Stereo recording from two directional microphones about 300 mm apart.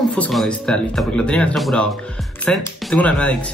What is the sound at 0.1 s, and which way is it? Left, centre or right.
Speech, centre.